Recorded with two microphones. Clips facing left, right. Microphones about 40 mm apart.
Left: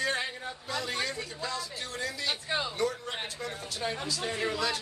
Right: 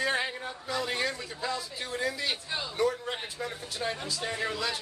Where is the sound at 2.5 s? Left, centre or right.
Left.